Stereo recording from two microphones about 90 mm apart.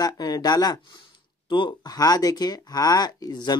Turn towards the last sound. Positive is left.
turn(degrees=50)  # may be behind; listen again after turning